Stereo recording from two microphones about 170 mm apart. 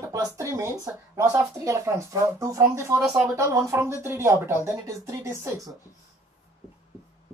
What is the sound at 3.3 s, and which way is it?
Speech, 15° right (ahead or behind).